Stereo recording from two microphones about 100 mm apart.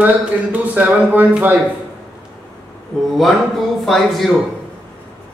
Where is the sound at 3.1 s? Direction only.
Centre (ahead or behind).